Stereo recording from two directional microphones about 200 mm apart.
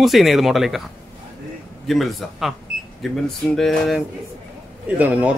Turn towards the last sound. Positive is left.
turn(degrees=-5)  # may be behind; listen again after turning